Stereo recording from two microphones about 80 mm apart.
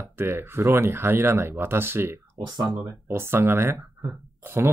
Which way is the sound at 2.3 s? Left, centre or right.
Right.